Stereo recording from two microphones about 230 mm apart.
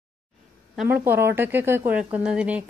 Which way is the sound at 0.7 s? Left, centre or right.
Centre.